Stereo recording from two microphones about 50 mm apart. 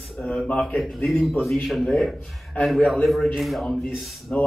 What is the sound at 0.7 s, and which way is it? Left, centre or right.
A man's voice, centre.